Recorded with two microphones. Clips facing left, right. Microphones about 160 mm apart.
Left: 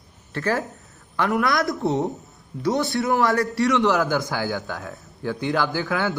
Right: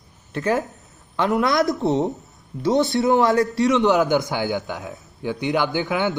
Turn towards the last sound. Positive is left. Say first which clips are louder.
# right 2 dB
turn(degrees=-20)  # may be behind; listen again after turning